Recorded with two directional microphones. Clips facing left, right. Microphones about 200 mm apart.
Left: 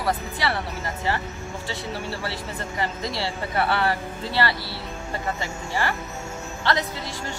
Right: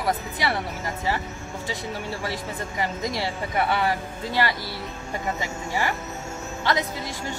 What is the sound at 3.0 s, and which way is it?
Speech, 15° right (ahead or behind).